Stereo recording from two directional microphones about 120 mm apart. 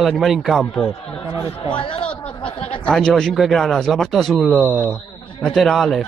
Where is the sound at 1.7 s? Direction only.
45° left (ahead or behind).